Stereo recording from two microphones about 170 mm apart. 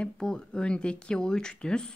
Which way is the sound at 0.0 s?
5° left (ahead or behind).